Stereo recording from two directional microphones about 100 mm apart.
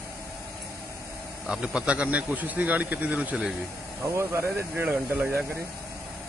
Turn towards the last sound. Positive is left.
turn(degrees=-20)  # may be behind; listen again after turning